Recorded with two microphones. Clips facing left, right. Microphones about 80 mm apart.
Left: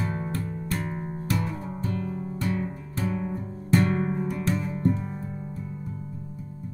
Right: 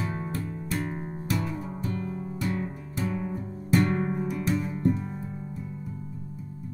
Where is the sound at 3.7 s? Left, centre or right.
Centre.